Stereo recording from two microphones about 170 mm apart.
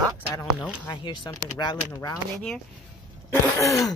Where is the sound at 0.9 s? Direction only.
25° left (ahead or behind).